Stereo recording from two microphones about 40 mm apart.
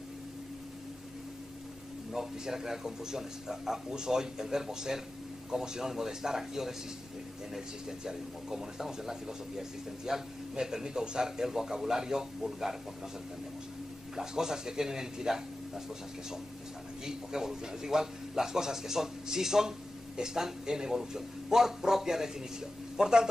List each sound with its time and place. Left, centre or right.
2.1 s a man's voice: centre
14.1 s a man's voice: centre
17.0 s a man's voice: centre